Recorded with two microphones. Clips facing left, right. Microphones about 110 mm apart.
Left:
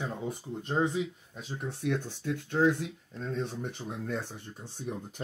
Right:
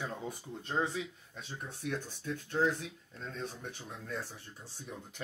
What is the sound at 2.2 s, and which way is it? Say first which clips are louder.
Speech: left 4 dB; 65° left (ahead or behind).